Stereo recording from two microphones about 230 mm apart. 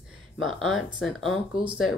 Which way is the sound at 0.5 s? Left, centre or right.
Centre.